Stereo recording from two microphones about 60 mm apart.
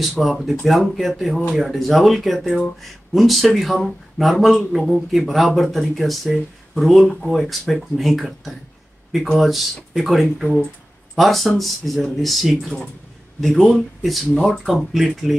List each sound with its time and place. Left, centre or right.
0.0 s speech: centre